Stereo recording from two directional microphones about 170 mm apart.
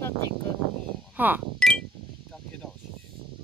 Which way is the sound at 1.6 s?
5° left (ahead or behind).